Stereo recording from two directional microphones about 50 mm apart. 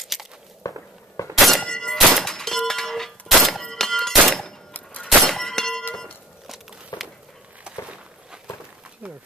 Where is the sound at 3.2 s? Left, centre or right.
Centre.